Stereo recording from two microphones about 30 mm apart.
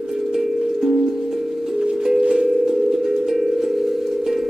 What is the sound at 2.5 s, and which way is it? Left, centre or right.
Dial tone, centre.